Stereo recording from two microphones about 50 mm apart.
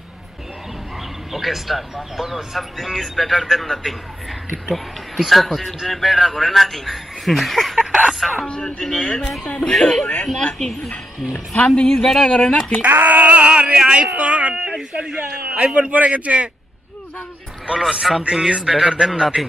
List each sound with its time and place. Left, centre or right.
1.3 s speech: centre
8.5 s speech: centre
9.2 s speech: centre
9.5 s speech: centre
12.8 s speech: right
17.7 s a man's voice: centre